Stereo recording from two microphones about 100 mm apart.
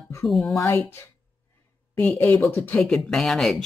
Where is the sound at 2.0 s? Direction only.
15° left (ahead or behind).